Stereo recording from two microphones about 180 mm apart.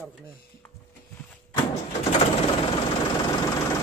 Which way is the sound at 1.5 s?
35° left (ahead or behind).